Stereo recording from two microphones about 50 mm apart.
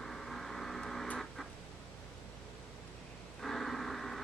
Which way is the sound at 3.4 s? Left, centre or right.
Centre.